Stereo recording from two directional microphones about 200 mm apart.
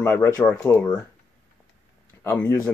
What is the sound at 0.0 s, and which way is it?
Speech, 15° left (ahead or behind).